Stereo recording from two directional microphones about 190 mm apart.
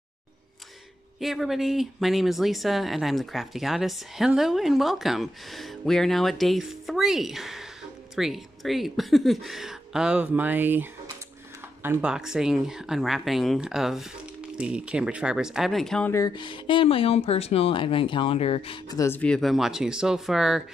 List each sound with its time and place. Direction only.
1.2 s speech: centre (ahead or behind)
16.1 s speech: 20° left (ahead or behind); by 20.6 s 5° right (ahead or behind)